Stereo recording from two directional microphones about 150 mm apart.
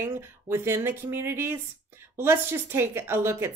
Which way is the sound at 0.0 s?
15° right (ahead or behind).